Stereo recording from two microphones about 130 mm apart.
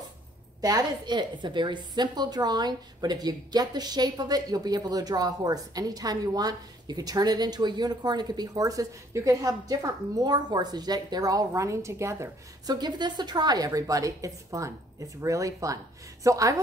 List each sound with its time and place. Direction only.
0.6 s a woman's voice: 30° right (ahead or behind)
12.7 s a woman's voice: 35° right (ahead or behind)